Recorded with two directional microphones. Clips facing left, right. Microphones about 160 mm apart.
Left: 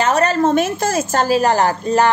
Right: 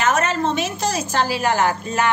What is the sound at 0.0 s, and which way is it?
A woman's voice, 35° left (ahead or behind).